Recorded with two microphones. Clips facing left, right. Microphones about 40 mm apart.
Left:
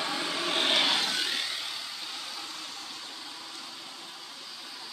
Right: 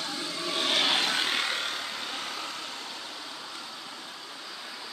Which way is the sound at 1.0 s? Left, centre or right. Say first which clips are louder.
Right 3 dB; right.